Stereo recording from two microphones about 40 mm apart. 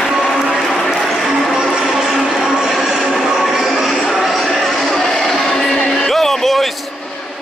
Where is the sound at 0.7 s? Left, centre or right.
Centre.